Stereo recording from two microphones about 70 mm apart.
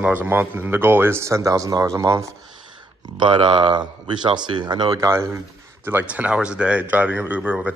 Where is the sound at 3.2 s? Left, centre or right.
Right.